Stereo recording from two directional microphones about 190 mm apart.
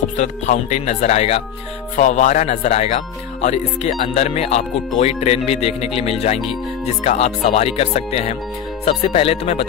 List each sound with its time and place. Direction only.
0.2 s speech: 40° left (ahead or behind)